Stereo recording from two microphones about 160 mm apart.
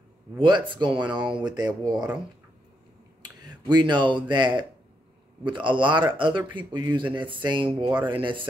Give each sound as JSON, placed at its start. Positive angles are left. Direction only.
{"t": 0.4, "sound": "speech", "side_deg": -30}
{"t": 3.2, "sound": "speech", "side_deg": -25}